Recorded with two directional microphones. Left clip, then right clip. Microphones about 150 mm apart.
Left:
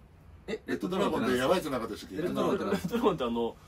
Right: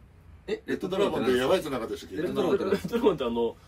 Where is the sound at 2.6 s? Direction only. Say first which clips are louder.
Right 4 dB; 25° left (ahead or behind).